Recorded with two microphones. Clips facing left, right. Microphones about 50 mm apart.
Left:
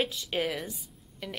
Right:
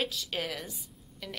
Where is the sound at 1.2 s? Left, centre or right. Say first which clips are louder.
Left 3 dB; left.